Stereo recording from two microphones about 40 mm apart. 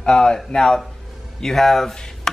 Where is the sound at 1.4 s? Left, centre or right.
Centre.